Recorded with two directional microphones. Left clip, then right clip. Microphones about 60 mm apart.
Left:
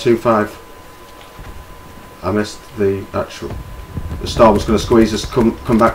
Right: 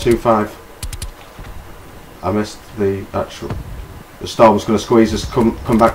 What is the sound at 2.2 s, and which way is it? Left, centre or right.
Speech, right.